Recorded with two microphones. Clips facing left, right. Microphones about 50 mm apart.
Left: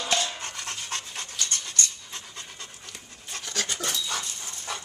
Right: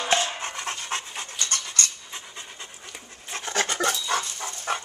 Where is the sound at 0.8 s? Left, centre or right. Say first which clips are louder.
Right 4 dB; right.